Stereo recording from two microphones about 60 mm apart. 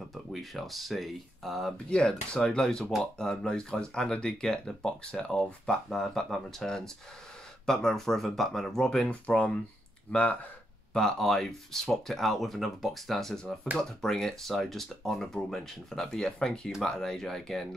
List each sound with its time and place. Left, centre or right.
0.1 s speech: centre
1.9 s speech: centre
10.9 s speech: centre